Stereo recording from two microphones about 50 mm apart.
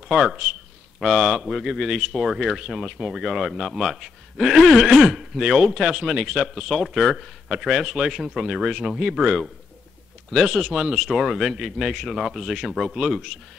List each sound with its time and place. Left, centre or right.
0.1 s speech: centre